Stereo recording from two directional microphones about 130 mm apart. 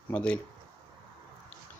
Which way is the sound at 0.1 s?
10° left (ahead or behind).